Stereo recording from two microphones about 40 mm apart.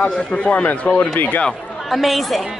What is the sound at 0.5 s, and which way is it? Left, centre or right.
Speech, left.